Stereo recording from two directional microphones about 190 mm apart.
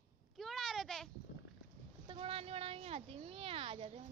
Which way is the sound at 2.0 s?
30° right (ahead or behind).